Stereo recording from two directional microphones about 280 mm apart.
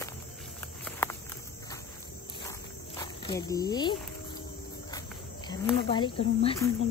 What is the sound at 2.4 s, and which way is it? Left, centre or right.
Cricket, centre.